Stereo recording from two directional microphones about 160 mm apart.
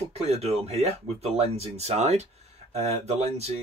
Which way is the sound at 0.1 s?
40° right (ahead or behind).